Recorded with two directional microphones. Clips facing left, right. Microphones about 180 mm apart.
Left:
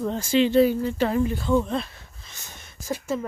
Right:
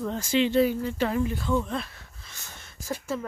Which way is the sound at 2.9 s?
15° left (ahead or behind).